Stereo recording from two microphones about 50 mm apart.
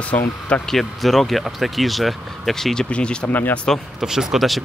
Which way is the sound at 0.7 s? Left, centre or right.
Centre.